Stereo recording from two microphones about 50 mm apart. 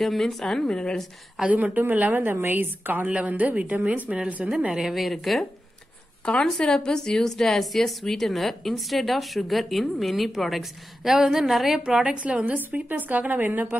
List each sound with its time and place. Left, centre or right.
0.0 s speech: centre
1.4 s a woman's voice: right
3.1 s a woman's voice: right
4.4 s a woman's voice: centre
4.7 s a woman's voice: centre
6.3 s a woman's voice: centre
11.8 s a woman's voice: centre; by 13.7 s right